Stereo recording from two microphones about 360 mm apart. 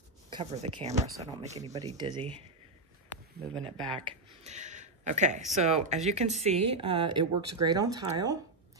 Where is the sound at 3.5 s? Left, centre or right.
Centre.